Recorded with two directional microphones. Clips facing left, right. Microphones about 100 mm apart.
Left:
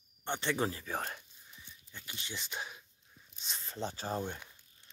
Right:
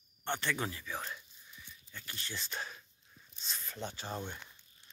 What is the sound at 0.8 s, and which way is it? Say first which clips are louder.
Speech: left 3 dB; 50° left (ahead or behind).